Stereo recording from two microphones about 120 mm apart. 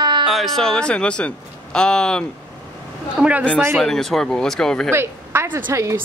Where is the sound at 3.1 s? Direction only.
10° right (ahead or behind).